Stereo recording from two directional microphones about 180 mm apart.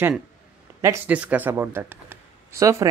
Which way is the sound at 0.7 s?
15° right (ahead or behind).